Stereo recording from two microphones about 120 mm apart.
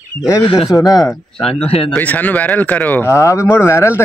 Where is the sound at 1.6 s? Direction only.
55° left (ahead or behind).